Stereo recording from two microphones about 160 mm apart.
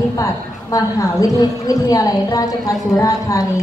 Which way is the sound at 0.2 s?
20° left (ahead or behind).